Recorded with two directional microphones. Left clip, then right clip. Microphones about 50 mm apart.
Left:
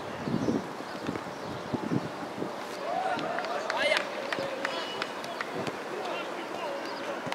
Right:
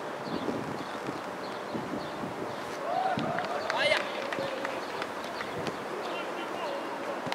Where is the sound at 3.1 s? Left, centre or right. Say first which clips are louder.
Even; centre.